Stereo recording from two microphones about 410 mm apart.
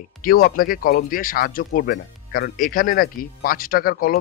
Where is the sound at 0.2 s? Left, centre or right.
Left.